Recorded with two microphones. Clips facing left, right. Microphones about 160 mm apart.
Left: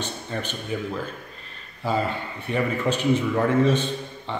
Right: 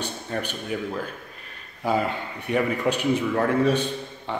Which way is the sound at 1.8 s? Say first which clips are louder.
Right 1 dB; 15° right (ahead or behind).